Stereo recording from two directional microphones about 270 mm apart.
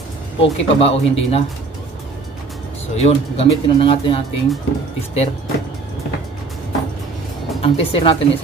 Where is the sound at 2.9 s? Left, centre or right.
Left.